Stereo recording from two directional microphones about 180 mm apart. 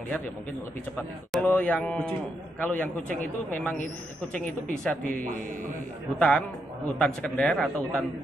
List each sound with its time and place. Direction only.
0.9 s speech: 10° left (ahead or behind)
4.8 s a man's voice: 10° left (ahead or behind)